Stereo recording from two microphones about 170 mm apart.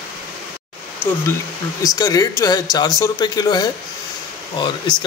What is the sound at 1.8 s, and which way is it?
Speech, 20° left (ahead or behind).